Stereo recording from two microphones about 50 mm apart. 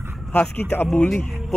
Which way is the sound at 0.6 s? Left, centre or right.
Left.